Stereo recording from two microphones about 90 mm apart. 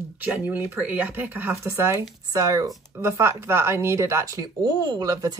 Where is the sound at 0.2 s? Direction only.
20° right (ahead or behind).